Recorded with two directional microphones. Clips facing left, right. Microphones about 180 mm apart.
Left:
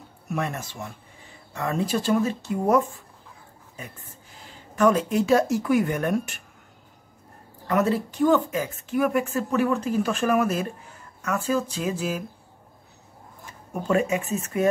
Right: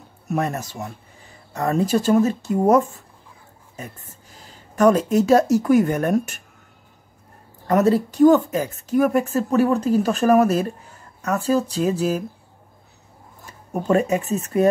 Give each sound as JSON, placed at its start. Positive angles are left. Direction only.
{"t": 0.3, "sound": "a woman's voice", "side_deg": -40}
{"t": 4.5, "sound": "a woman's voice", "side_deg": -40}
{"t": 7.6, "sound": "a woman's voice", "side_deg": -40}
{"t": 13.5, "sound": "speech", "side_deg": -35}